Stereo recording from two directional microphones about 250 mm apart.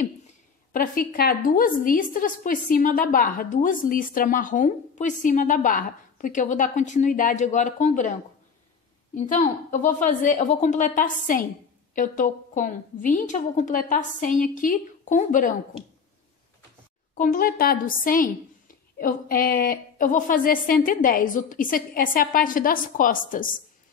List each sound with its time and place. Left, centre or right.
0.7 s a woman's voice: left
17.1 s a woman's voice: left